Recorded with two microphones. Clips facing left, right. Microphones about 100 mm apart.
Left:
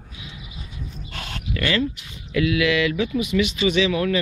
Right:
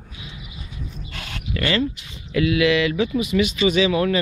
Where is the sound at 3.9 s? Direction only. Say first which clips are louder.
Right 2 dB; 25° right (ahead or behind).